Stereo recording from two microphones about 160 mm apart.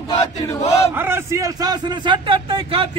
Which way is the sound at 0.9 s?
15° right (ahead or behind).